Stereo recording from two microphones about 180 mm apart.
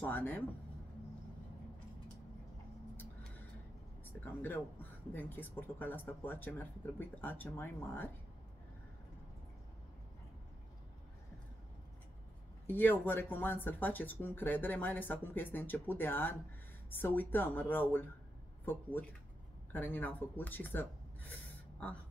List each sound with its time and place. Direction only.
0.0 s speech: 10° left (ahead or behind)
3.0 s a sound: 10° left (ahead or behind)
4.0 s speech: 10° left (ahead or behind)
12.6 s speech: 10° left (ahead or behind)
21.3 s gasp: 5° left (ahead or behind)